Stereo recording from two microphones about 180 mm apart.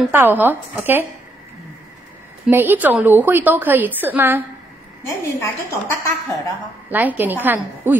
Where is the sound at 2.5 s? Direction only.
10° right (ahead or behind).